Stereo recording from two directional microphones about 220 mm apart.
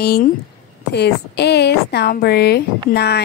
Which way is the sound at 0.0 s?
45° left (ahead or behind).